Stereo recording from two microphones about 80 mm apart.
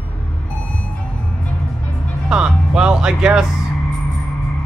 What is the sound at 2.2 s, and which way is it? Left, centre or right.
Speech, centre.